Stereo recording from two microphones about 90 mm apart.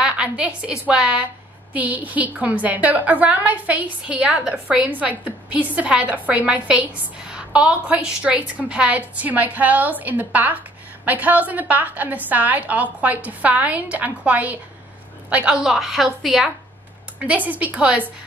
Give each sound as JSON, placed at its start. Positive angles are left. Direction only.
{"t": 0.0, "sound": "a woman's voice", "side_deg": -10}
{"t": 17.2, "sound": "a woman's voice", "side_deg": -15}